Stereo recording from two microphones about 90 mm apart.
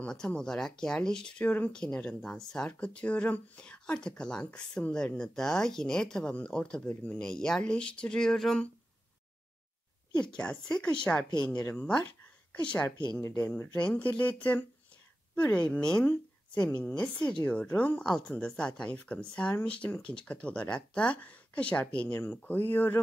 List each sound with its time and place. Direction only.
0.0 s speech: 10° left (ahead or behind)
7.2 s speech: 5° left (ahead or behind)
10.3 s speech: 10° left (ahead or behind)